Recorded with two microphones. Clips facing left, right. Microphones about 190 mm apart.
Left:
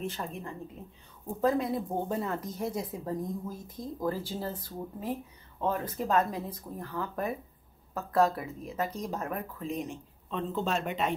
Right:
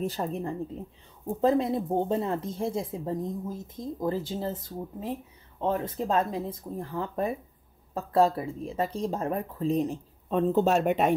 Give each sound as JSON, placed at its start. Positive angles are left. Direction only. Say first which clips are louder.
{"t": 0.0, "sound": "speech", "louder": "right 6 dB", "side_deg": -35}
{"t": 1.2, "sound": "speech", "louder": "right 4 dB", "side_deg": -25}
{"t": 10.3, "sound": "speech", "louder": "right 8 dB", "side_deg": -45}